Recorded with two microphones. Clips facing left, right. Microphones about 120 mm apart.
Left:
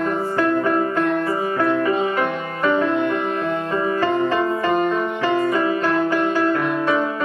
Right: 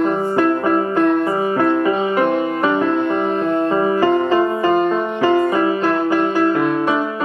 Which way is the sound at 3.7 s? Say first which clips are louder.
Right 3 dB; 20° right (ahead or behind).